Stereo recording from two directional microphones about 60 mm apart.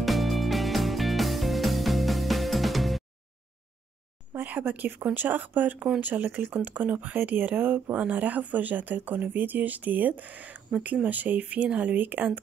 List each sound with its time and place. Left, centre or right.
0.0 s music: centre
4.5 s speech: right